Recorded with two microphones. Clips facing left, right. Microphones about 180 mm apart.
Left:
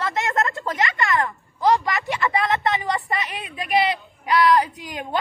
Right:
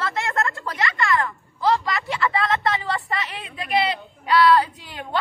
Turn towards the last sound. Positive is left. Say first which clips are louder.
# left 1 dB
turn(degrees=15)  # may be behind; listen again after turning